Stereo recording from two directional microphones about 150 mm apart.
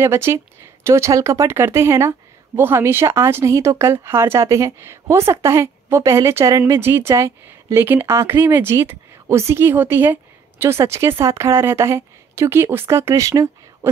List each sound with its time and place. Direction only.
0.0 s speech: 15° right (ahead or behind)